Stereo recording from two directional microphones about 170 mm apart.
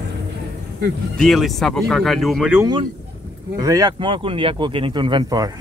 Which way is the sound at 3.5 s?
20° right (ahead or behind).